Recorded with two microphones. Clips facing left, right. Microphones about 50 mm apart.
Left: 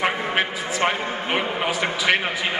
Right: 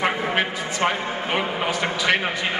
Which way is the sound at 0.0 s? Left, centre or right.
Centre.